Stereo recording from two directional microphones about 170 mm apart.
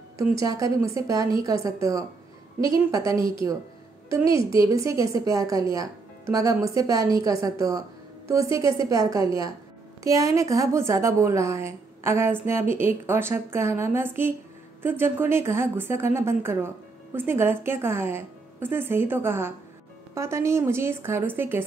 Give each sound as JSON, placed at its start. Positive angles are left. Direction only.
{"t": 0.2, "sound": "a woman's voice", "side_deg": -20}
{"t": 3.1, "sound": "a woman's voice", "side_deg": -20}